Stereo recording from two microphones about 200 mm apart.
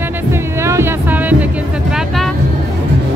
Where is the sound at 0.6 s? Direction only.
10° right (ahead or behind).